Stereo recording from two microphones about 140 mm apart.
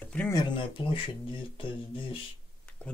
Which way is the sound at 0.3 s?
30° left (ahead or behind).